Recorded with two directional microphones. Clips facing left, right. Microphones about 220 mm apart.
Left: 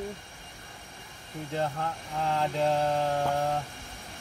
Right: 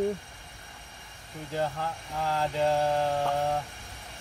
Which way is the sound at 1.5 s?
5° right (ahead or behind).